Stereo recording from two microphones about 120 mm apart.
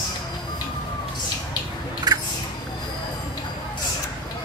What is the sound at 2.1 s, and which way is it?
Squish, 35° right (ahead or behind).